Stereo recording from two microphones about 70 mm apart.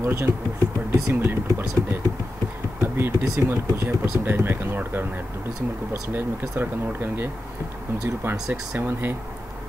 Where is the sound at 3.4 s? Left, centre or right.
Right.